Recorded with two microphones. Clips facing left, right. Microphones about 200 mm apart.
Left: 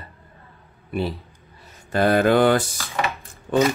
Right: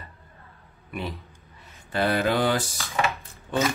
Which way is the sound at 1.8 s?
45° left (ahead or behind).